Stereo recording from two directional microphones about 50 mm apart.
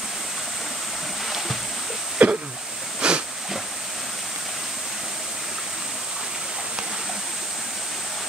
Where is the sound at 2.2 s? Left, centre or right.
Right.